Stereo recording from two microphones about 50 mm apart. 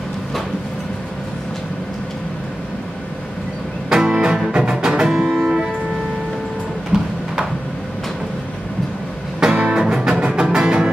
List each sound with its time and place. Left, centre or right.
3.9 s music: centre
6.9 s a sound: centre
9.4 s music: centre